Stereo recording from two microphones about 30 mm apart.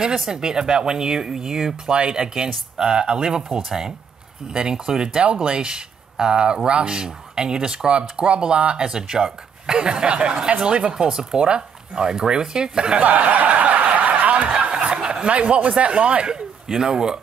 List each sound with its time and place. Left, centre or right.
0.3 s speech: right
1.9 s speech: right
5.2 s speech: right
5.5 s speech: right
7.9 s speech: right
8.8 s speech: right
13.0 s snicker: right
15.0 s speech: right
16.3 s speech: right